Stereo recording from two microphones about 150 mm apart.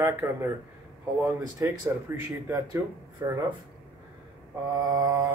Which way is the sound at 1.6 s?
15° right (ahead or behind).